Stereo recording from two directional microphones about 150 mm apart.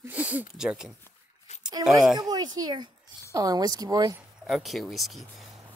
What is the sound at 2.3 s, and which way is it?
Speech, 25° right (ahead or behind).